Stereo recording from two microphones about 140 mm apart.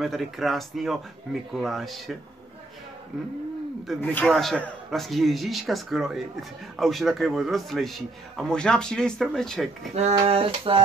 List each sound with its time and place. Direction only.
0.0 s a man's voice: centre (ahead or behind)
4.0 s a man's voice: 10° left (ahead or behind)
4.4 s a man's voice: centre (ahead or behind)
10.2 s a sound: 40° right (ahead or behind)